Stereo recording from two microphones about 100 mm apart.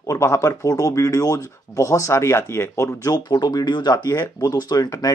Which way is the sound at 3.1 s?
45° left (ahead or behind).